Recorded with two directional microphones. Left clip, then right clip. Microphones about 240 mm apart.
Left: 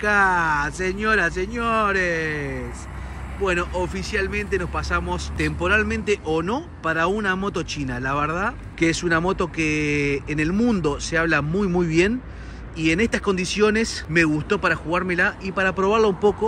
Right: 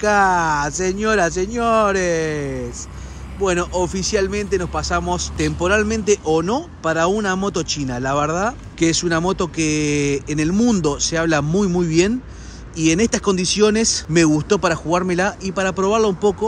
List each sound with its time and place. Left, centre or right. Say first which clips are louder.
0.0 s speech: right 3 dB; centre